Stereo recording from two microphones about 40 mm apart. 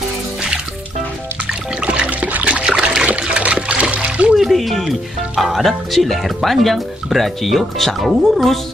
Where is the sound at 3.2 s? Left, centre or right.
Right.